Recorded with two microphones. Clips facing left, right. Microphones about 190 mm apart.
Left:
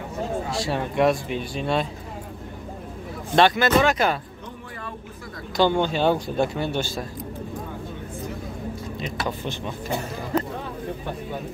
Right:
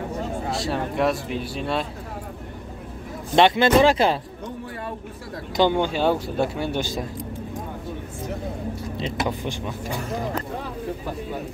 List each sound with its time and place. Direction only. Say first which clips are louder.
0.5 s speech: right 1 dB; centre (ahead or behind)
3.3 s speech: right 2 dB; 25° right (ahead or behind)
5.6 s speech: even; 15° right (ahead or behind)
9.1 s speech: right 2 dB; 20° right (ahead or behind)